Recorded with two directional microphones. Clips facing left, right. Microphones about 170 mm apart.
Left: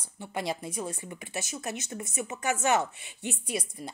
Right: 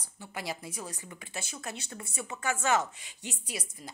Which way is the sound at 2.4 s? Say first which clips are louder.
Left 2 dB; 20° left (ahead or behind).